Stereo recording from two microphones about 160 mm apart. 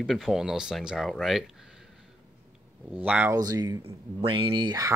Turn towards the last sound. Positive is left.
turn(degrees=-25)  # may be behind; listen again after turning